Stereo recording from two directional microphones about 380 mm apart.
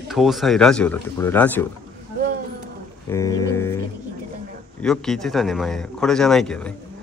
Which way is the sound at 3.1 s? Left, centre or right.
Centre.